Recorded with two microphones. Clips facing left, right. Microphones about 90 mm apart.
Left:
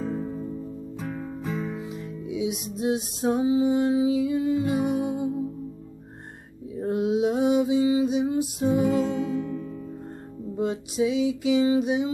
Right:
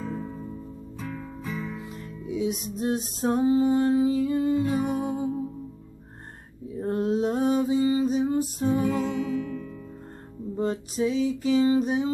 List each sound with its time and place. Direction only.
0.0 s music: 20° left (ahead or behind)
1.8 s music: 5° left (ahead or behind)
6.8 s mantra: 10° left (ahead or behind)
8.5 s music: 10° left (ahead or behind)
9.2 s music: 25° left (ahead or behind)
10.5 s music: 10° left (ahead or behind)